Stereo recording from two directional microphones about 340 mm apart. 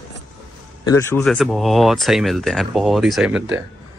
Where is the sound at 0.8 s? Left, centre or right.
Centre.